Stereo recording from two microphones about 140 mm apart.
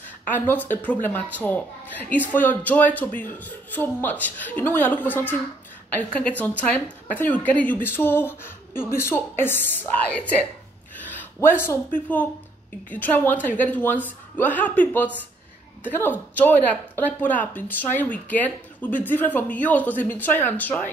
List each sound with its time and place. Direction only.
0.3 s speech: 15° left (ahead or behind)
6.7 s speech: 10° left (ahead or behind)